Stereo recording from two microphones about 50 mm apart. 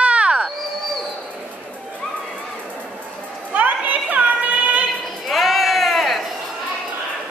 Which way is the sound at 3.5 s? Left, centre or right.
Right.